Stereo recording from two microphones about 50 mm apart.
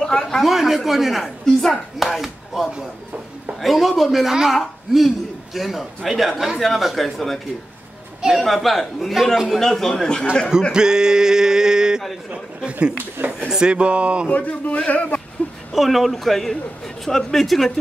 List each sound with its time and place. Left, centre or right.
0.0 s speech: centre
0.4 s a man's voice: centre
1.4 s a man's voice: centre
10.7 s speech: centre
12.3 s speech: right
14.3 s a man's voice: left
15.7 s a man's voice: centre